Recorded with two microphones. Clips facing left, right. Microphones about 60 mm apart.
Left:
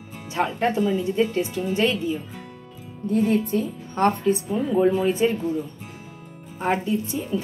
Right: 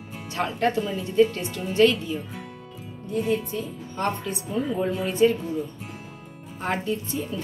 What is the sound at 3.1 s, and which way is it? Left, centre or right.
A woman's voice, left.